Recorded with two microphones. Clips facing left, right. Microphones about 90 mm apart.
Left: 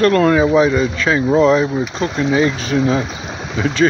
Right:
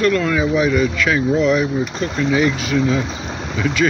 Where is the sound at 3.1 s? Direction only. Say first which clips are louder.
Even; 5° left (ahead or behind).